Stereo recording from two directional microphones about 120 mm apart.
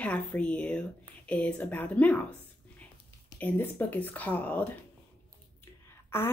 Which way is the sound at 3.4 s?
15° left (ahead or behind).